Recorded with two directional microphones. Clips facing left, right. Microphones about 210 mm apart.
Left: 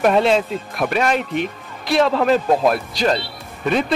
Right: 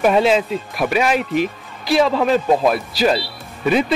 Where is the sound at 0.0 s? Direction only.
Centre (ahead or behind).